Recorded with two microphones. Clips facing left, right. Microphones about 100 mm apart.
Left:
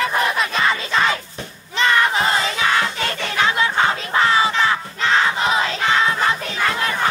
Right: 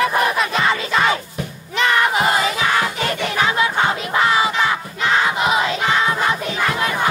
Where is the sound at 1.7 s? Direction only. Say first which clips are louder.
Even; 30° left (ahead or behind).